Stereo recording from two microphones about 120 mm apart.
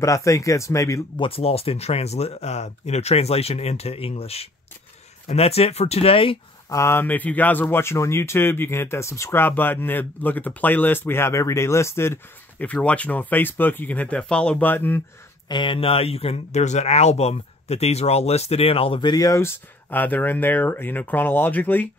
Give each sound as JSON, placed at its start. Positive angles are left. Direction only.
{"t": 0.0, "sound": "speech", "side_deg": 25}
{"t": 1.1, "sound": "speech", "side_deg": 50}
{"t": 6.7, "sound": "speech", "side_deg": 20}
{"t": 15.4, "sound": "speech", "side_deg": 40}
{"t": 19.4, "sound": "speech", "side_deg": 15}